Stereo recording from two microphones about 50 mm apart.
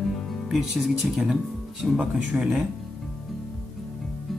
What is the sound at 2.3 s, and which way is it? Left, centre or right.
Speech, right.